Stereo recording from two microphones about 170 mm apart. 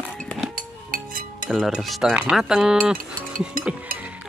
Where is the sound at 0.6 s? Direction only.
55° right (ahead or behind).